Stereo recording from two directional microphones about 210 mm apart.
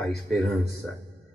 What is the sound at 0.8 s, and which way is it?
Speech, centre (ahead or behind).